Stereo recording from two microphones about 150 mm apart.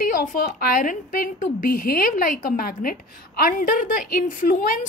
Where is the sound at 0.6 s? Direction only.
75° left (ahead or behind).